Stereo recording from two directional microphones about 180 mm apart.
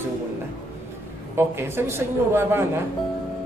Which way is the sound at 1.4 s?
15° right (ahead or behind).